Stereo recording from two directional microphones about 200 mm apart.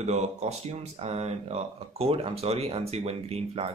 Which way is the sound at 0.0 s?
35° right (ahead or behind).